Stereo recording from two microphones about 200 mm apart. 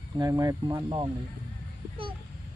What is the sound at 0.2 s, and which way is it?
Speech, 15° right (ahead or behind).